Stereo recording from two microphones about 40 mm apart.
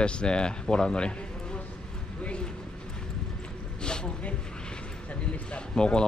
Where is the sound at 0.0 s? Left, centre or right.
Left.